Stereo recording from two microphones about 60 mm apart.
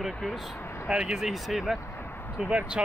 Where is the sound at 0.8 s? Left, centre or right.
Centre.